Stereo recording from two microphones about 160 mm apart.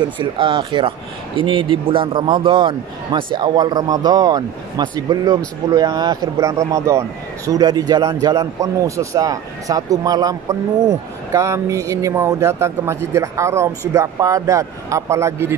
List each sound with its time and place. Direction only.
0.2 s speech: 30° right (ahead or behind)